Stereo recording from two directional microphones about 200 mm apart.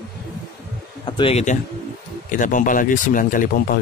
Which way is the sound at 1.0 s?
25° left (ahead or behind).